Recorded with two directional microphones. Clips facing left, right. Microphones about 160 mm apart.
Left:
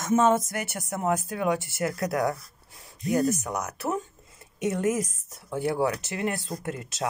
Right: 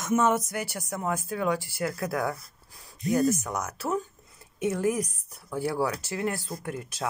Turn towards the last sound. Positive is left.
turn(degrees=20)  # may be behind; listen again after turning